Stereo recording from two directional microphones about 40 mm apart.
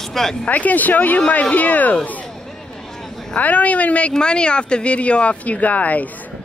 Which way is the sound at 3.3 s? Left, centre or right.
Left.